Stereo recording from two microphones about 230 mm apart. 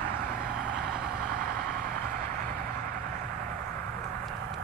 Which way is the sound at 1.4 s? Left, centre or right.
Right.